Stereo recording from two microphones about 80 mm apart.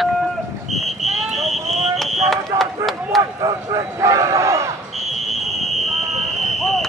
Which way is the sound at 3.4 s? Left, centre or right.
Right.